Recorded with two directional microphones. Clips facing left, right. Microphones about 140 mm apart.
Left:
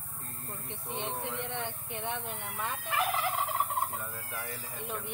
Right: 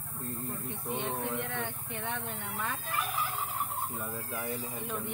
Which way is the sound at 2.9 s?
90° left.